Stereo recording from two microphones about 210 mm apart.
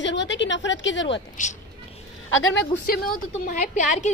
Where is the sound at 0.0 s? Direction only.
60° left (ahead or behind).